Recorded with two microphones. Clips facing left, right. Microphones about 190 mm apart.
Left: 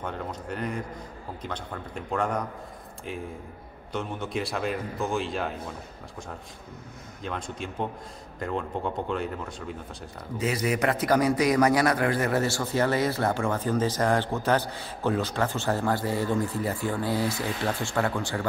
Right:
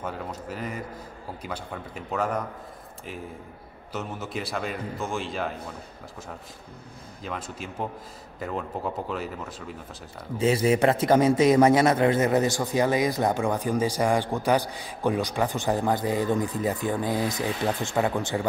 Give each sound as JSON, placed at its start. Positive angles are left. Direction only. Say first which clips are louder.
{"t": 0.0, "sound": "a man's voice", "louder": "even", "side_deg": -5}
{"t": 3.9, "sound": "a man's voice", "louder": "left 2 dB", "side_deg": -5}
{"t": 7.2, "sound": "a man's voice", "louder": "left 1 dB", "side_deg": -5}
{"t": 10.3, "sound": "a man's voice", "louder": "right 5 dB", "side_deg": -25}